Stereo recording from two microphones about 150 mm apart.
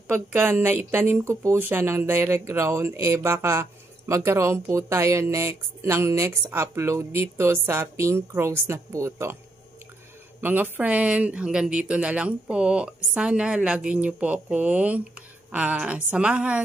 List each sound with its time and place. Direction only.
0.1 s speech: 15° right (ahead or behind)
10.4 s speech: 10° right (ahead or behind)